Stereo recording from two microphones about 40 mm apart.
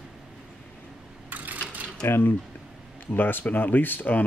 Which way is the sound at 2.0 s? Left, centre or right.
Left.